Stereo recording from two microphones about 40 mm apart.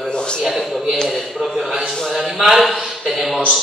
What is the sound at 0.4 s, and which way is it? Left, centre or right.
A man's voice, centre.